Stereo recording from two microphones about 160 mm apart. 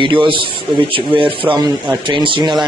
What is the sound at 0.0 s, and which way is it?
Speech, 30° right (ahead or behind).